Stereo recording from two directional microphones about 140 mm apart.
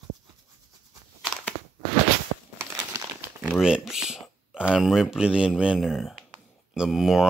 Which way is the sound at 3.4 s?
5° right (ahead or behind).